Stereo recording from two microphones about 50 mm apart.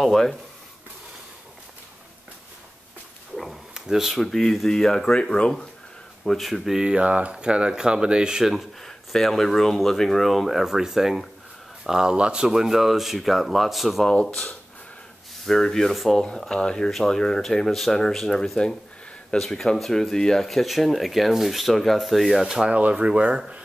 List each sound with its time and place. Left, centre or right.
0.0 s speech: centre
3.7 s speech: centre
4.2 s speech: centre
6.2 s speech: centre
6.8 s speech: right
8.8 s speech: centre
14.0 s speech: centre
15.9 s speech: centre
16.3 s speech: centre
22.5 s speech: centre
22.8 s speech: right